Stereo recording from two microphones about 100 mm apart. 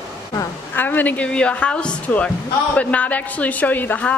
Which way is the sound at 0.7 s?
20° left (ahead or behind).